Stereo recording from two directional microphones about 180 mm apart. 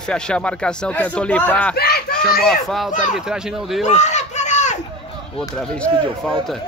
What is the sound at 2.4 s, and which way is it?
A man's voice, centre (ahead or behind).